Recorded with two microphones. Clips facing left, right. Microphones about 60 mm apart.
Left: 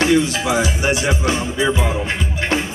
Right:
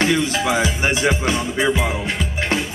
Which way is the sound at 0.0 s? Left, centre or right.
Right.